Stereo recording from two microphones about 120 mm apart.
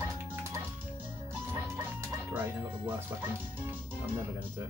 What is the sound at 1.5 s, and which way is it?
Speech, 20° right (ahead or behind).